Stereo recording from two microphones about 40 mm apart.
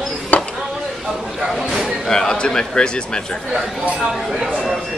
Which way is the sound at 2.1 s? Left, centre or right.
Centre.